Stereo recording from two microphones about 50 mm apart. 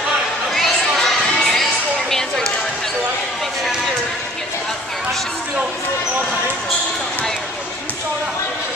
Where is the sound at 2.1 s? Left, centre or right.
Centre.